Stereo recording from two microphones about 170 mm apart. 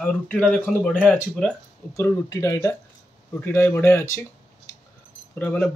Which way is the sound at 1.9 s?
20° left (ahead or behind).